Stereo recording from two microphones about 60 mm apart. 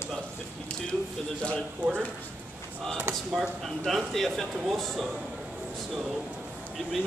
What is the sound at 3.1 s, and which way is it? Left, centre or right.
Speech, right.